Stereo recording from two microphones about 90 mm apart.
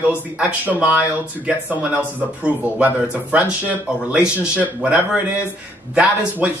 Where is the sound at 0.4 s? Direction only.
15° right (ahead or behind).